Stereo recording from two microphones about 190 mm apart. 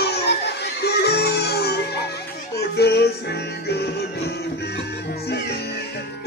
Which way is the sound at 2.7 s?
60° left (ahead or behind).